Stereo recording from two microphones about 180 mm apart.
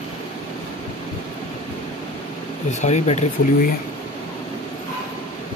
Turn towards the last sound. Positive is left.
turn(degrees=40)  # may be behind; listen again after turning